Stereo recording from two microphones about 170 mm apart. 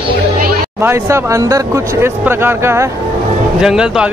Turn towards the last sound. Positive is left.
turn(degrees=-5)  # may be behind; listen again after turning